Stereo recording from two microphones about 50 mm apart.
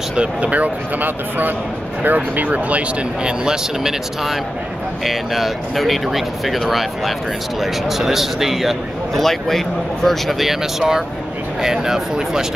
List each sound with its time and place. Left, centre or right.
0.1 s speech: right
3.3 s a man's voice: centre
10.4 s speech: centre